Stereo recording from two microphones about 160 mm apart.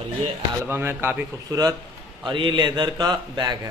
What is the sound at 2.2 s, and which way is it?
Speech, 30° right (ahead or behind).